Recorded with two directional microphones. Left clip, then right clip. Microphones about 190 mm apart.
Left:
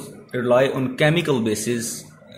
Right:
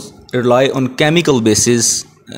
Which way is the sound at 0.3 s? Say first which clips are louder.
Right 6 dB; 55° right (ahead or behind).